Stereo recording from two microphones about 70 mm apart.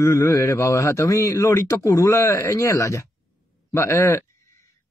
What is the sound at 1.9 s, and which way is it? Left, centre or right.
A man's voice, left.